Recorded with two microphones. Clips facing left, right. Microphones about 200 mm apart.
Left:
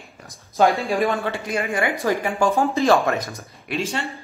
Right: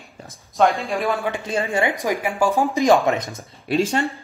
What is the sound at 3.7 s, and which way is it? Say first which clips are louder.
Speech: right 6 dB; 40° right (ahead or behind).